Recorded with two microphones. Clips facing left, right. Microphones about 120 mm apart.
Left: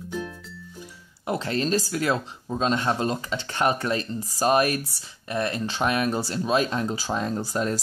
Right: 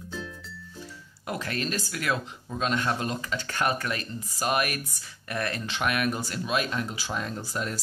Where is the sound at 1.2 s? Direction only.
25° left (ahead or behind).